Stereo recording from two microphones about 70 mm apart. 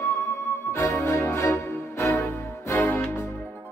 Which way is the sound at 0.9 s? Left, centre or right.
Left.